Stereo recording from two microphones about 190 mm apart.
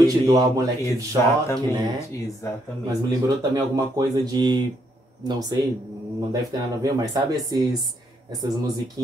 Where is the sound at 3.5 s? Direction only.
20° right (ahead or behind).